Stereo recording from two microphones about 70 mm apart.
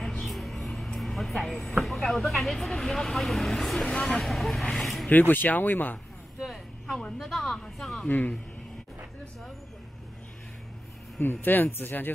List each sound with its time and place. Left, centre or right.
0.0 s speech: centre
5.1 s speech: left
6.4 s a sound: centre
7.2 s speech: centre
8.1 s speech: left
11.4 s speech: left